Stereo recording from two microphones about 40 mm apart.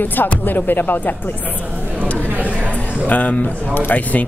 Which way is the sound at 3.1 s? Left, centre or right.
Left.